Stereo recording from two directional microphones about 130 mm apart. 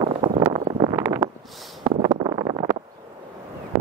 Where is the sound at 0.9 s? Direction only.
20° right (ahead or behind).